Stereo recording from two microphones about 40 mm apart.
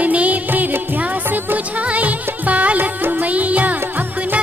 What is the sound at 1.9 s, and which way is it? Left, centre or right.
Music, right.